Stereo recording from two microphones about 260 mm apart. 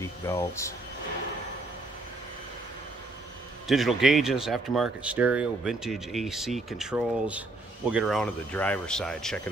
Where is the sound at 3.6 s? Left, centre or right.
Centre.